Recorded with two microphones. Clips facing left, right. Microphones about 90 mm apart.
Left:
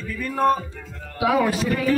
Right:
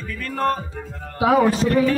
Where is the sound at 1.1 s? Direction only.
40° right (ahead or behind).